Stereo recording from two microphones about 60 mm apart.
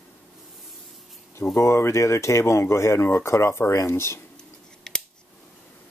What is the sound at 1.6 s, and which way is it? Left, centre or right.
Speech, left.